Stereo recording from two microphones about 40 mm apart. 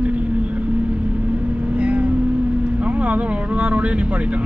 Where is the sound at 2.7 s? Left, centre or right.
Right.